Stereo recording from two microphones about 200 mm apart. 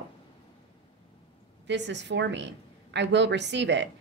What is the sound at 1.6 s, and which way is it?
A woman's voice, 60° right (ahead or behind).